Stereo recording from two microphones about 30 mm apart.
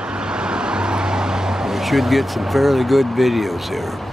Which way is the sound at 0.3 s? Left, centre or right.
Right.